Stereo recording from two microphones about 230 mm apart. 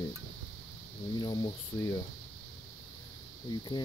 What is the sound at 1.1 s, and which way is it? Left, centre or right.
Speech, centre.